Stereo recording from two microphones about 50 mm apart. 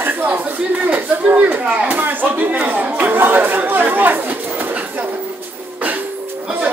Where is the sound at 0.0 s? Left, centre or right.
Right.